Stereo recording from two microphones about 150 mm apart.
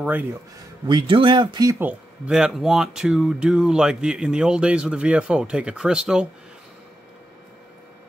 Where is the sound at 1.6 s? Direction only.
10° right (ahead or behind).